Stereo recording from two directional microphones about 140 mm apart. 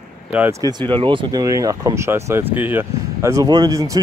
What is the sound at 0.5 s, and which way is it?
Speech, 25° right (ahead or behind).